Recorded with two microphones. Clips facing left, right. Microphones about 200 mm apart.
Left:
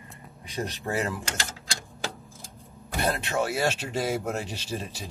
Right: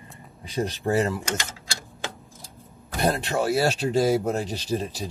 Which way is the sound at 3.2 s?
35° right (ahead or behind).